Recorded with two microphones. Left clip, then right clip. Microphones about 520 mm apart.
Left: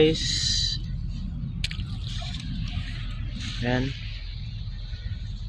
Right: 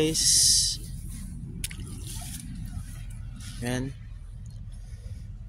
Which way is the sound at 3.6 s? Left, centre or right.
Right.